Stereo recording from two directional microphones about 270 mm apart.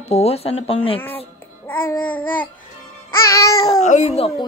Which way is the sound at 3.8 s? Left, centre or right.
Left.